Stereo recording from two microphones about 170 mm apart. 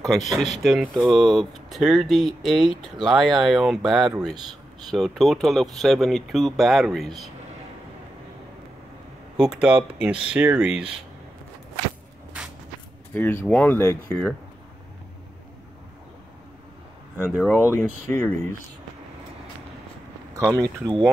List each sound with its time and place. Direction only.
0.6 s speech: centre (ahead or behind)
9.4 s speech: 5° right (ahead or behind)
13.1 s speech: 10° left (ahead or behind)
17.5 s speech: 15° left (ahead or behind)
20.3 s speech: 20° right (ahead or behind)